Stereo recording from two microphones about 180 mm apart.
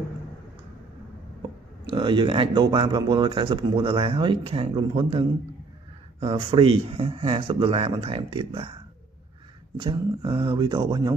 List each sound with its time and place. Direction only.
1.9 s speech: 25° right (ahead or behind)
9.8 s speech: 25° right (ahead or behind)